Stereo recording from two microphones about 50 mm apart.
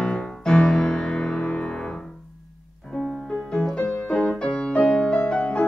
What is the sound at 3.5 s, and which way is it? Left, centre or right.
Music, centre.